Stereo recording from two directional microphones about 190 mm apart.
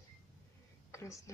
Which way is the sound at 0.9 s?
15° left (ahead or behind).